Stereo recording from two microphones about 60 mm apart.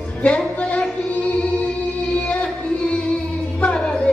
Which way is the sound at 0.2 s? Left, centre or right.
Left.